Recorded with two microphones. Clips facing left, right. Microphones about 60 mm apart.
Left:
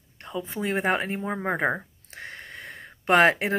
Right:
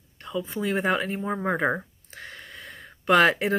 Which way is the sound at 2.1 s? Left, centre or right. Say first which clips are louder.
Left 2 dB; left.